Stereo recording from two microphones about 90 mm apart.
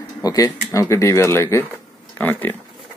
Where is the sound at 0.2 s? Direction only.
40° left (ahead or behind).